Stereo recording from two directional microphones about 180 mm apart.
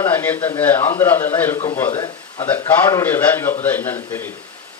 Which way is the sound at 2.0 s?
25° left (ahead or behind).